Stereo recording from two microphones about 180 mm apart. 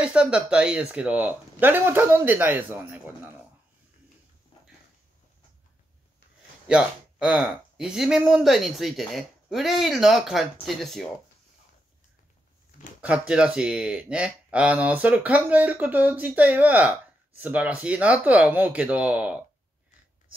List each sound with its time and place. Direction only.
0.0 s speech: 5° right (ahead or behind)
6.7 s speech: 5° right (ahead or behind)
13.0 s speech: 5° right (ahead or behind)